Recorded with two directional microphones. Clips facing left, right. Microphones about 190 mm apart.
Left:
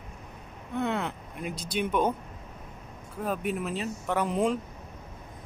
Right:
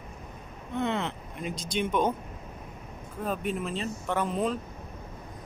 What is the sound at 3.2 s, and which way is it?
Speech, 10° left (ahead or behind).